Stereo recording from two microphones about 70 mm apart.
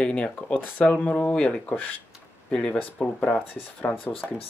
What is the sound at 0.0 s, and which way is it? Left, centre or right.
Speech, centre.